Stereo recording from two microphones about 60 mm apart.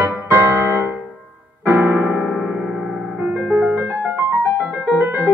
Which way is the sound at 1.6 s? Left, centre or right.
Right.